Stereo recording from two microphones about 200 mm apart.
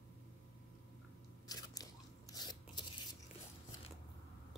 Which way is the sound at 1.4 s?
20° left (ahead or behind).